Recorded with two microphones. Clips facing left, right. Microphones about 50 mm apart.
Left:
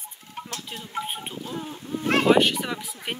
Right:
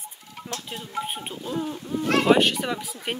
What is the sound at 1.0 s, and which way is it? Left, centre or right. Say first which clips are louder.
Speech: right 1 dB; centre.